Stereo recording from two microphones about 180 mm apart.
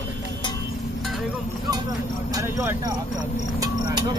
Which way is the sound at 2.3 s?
15° right (ahead or behind).